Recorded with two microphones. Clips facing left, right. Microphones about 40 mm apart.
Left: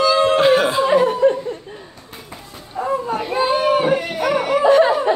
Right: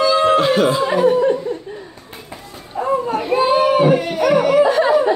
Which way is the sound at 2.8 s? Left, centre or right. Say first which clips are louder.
Right 2 dB; centre.